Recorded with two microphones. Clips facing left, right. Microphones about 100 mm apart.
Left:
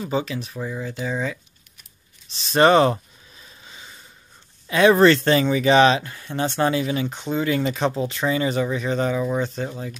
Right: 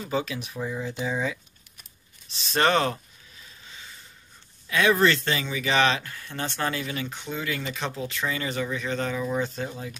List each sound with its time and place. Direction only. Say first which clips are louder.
0.1 s speech: left 2 dB; centre (ahead or behind)
0.8 s speech: left 2 dB; 15° right (ahead or behind)
2.5 s speech: left 7 dB; 15° left (ahead or behind)
3.6 s snort: left 2 dB; 25° left (ahead or behind)
4.6 s speech: left 7 dB; 30° left (ahead or behind); by 9.4 s 15° left (ahead or behind)
9.7 s speech: left 4 dB; centre (ahead or behind)